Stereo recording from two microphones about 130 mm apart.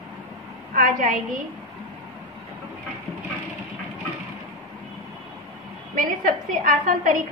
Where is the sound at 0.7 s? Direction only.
90° right.